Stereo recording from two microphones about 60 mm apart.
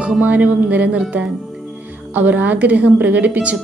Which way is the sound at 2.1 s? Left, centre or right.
Right.